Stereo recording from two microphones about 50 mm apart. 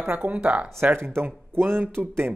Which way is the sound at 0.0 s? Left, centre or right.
Right.